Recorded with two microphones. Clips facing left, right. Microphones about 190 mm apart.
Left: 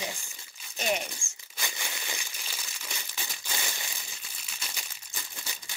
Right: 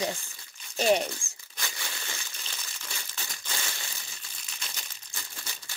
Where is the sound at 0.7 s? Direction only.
35° right (ahead or behind).